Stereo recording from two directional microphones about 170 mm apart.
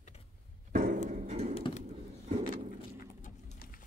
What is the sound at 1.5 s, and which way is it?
Bird, 35° left (ahead or behind).